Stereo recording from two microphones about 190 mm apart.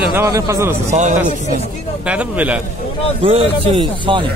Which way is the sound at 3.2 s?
30° right (ahead or behind).